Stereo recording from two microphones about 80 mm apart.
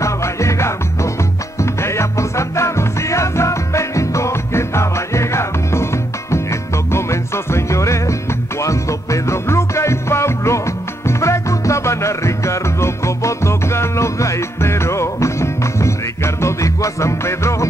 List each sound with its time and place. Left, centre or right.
0.0 s music: left
6.9 s music: left